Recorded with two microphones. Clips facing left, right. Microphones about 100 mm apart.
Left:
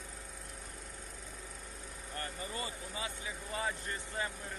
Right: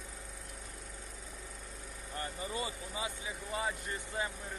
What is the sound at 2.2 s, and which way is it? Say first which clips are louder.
Speech: right 3 dB; 20° right (ahead or behind).